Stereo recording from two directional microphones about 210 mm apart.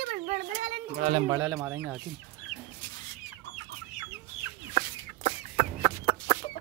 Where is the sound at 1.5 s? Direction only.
5° right (ahead or behind).